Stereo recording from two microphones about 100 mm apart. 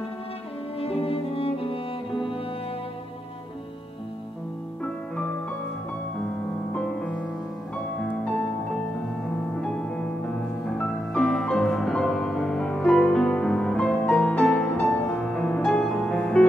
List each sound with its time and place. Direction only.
0.7 s music: 75° left (ahead or behind)
6.7 s music: 10° left (ahead or behind)
9.6 s music: 10° left (ahead or behind)